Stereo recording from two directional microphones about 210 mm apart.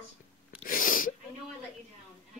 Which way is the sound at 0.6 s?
40° left (ahead or behind).